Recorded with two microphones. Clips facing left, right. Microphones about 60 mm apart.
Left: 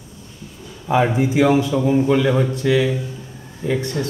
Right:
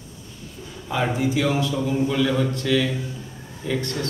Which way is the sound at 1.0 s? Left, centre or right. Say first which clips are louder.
Left 3 dB; left.